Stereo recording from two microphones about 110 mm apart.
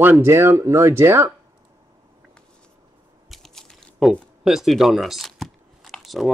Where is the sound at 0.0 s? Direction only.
20° right (ahead or behind).